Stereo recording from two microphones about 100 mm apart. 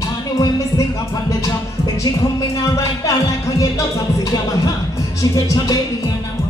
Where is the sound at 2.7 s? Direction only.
35° left (ahead or behind).